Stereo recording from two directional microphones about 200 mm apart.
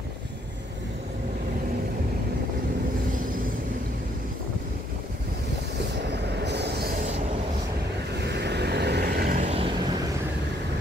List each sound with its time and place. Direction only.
6.3 s vehicle: 60° right (ahead or behind)
8.2 s vehicle: 55° right (ahead or behind); by 9.7 s 35° right (ahead or behind)